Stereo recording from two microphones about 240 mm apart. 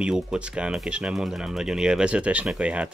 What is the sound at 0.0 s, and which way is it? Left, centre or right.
Speech, centre.